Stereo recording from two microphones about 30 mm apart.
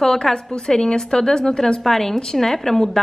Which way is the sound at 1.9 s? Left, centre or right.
Centre.